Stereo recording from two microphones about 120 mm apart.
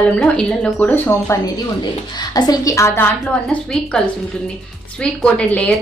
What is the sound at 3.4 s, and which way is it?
Speech, 10° left (ahead or behind).